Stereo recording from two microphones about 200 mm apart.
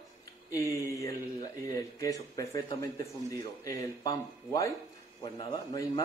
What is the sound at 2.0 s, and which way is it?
Speech, 15° left (ahead or behind).